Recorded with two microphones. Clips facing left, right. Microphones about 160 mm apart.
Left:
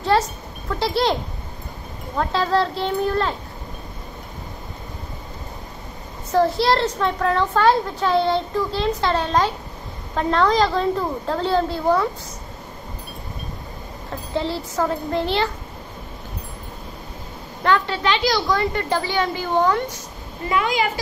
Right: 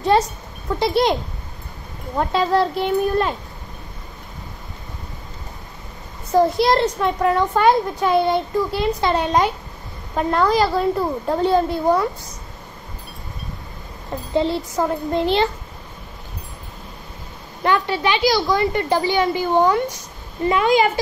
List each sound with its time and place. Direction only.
0.7 s a child's voice: 20° right (ahead or behind)
2.1 s a child's voice: 15° right (ahead or behind)
6.3 s a child's voice: 15° right (ahead or behind)
14.3 s a child's voice: 20° right (ahead or behind)
17.6 s a child's voice: 10° right (ahead or behind)
20.4 s a child's voice: 30° right (ahead or behind)